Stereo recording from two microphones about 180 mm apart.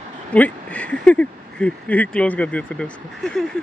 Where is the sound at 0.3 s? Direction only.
5° left (ahead or behind).